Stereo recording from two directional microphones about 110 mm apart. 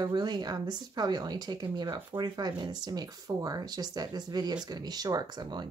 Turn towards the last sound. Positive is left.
turn(degrees=-40)  # may be behind; listen again after turning